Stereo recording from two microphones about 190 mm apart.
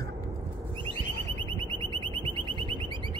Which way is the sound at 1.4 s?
25° right (ahead or behind).